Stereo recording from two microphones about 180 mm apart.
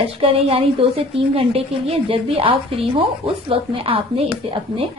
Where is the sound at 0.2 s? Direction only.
35° right (ahead or behind).